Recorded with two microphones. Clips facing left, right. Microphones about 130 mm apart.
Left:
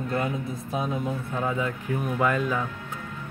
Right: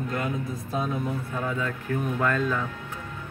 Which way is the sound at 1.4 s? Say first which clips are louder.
Left 3 dB; 15° left (ahead or behind).